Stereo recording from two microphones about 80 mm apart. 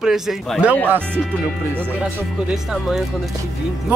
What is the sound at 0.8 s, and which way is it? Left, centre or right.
Speech, right.